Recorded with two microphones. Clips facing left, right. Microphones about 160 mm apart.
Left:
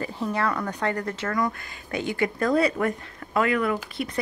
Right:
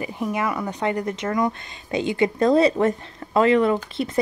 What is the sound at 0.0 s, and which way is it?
Speech, 15° right (ahead or behind).